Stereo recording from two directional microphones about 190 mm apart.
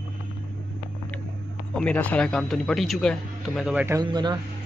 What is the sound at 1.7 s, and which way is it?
A man's voice, 5° left (ahead or behind).